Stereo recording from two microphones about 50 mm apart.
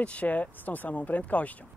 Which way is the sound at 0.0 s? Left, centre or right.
Left.